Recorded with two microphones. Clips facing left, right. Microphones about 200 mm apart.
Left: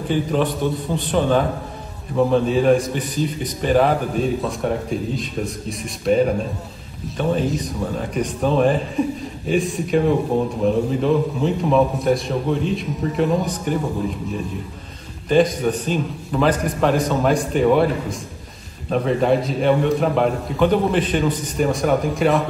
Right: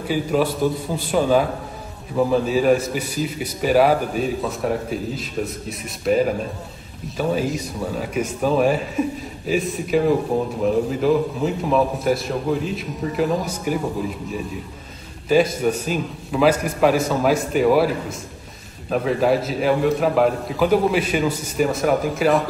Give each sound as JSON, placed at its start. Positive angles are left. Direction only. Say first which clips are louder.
{"t": 0.1, "sound": "a man's voice", "louder": "even", "side_deg": -5}